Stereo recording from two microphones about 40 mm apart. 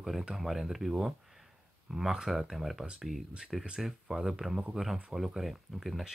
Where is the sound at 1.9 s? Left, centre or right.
Centre.